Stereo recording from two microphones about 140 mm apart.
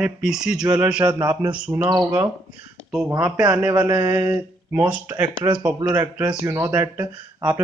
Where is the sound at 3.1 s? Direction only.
15° right (ahead or behind).